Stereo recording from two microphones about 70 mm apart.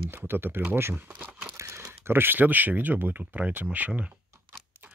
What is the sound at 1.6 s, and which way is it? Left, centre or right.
Crumpling, right.